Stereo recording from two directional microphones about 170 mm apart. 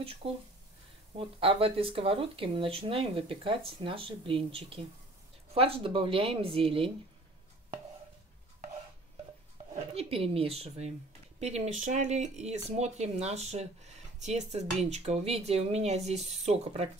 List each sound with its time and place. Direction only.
0.0 s speech: 35° right (ahead or behind)
9.9 s a woman's voice: 35° right (ahead or behind)